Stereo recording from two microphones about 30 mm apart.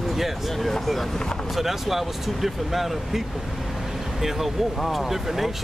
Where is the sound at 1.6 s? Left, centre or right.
Centre.